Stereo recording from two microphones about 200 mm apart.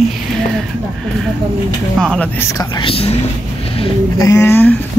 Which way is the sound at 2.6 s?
15° left (ahead or behind).